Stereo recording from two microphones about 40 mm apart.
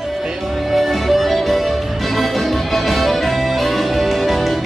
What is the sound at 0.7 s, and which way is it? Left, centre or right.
Music, centre.